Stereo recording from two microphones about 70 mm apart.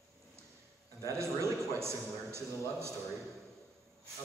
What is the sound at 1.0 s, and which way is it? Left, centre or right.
A man's voice, right.